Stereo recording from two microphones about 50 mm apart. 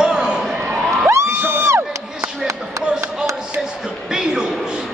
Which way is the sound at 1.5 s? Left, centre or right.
Right.